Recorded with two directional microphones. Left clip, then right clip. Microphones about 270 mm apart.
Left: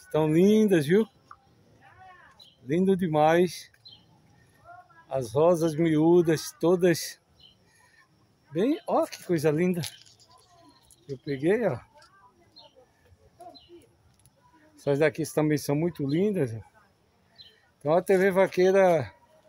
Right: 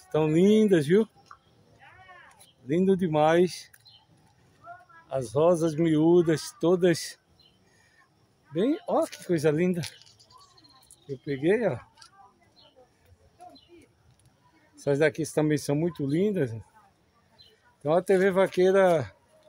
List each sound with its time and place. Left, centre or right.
0.1 s speech: centre
2.6 s speech: centre
5.1 s speech: centre
8.5 s speech: centre
11.1 s speech: centre
14.8 s speech: centre
17.8 s speech: centre